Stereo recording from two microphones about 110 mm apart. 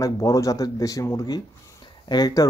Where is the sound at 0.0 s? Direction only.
30° left (ahead or behind).